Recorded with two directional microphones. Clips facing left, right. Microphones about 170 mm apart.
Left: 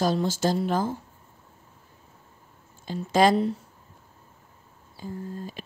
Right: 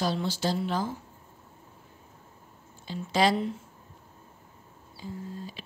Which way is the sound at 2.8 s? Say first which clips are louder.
Left 5 dB; 45° left (ahead or behind).